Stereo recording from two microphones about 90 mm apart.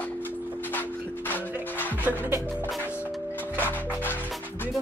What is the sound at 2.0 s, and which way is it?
Music, 20° right (ahead or behind).